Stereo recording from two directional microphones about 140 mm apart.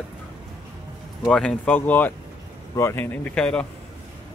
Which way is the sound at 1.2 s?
5° left (ahead or behind).